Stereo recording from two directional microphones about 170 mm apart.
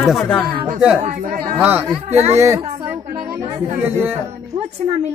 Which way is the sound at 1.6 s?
10° right (ahead or behind).